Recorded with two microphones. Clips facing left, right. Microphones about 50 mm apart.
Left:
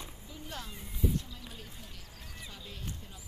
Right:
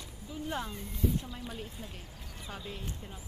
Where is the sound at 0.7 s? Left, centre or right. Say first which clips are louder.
Right 1 dB; centre.